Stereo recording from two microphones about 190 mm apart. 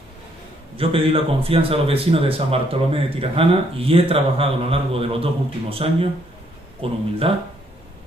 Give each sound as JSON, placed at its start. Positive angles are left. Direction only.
{"t": 0.7, "sound": "speech", "side_deg": -30}